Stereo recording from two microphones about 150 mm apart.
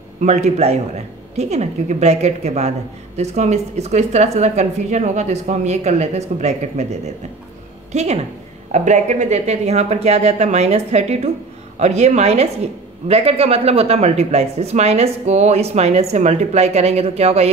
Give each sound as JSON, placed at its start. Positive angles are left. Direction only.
{"t": 0.2, "sound": "speech", "side_deg": -50}
{"t": 7.9, "sound": "speech", "side_deg": -45}